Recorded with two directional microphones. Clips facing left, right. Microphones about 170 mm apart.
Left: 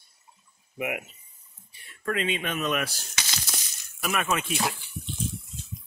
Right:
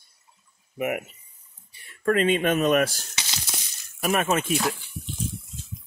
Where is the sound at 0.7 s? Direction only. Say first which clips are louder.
Right 4 dB; 40° right (ahead or behind).